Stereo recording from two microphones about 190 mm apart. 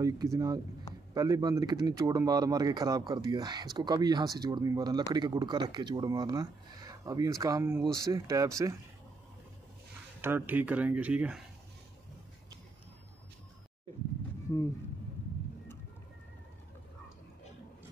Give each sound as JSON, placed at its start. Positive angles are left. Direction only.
{"t": 0.0, "sound": "speech", "side_deg": -20}
{"t": 10.2, "sound": "speech", "side_deg": -10}